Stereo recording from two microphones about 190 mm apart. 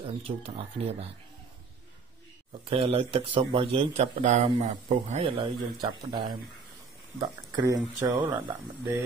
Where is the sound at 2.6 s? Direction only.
30° right (ahead or behind).